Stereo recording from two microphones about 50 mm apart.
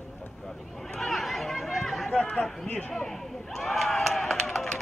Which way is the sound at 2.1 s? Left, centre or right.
Left.